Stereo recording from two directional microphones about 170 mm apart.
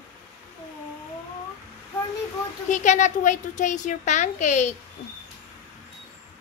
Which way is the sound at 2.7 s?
45° left (ahead or behind).